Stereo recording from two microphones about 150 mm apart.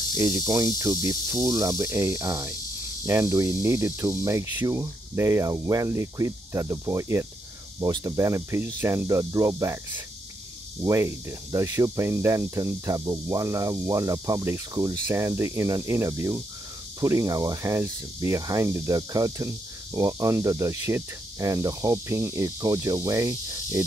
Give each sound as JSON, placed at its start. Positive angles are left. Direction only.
{"t": 0.1, "sound": "speech", "side_deg": -20}